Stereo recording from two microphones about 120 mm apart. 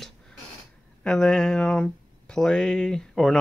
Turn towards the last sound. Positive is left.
turn(degrees=5)  # may be behind; listen again after turning